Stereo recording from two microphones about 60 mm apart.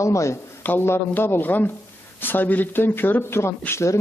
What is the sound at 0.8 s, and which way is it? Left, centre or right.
Speech, left.